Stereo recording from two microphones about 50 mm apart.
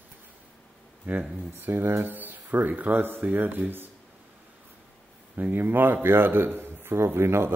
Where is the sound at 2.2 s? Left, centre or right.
Right.